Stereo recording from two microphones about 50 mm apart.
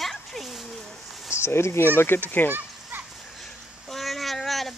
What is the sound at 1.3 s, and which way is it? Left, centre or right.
Speech, left.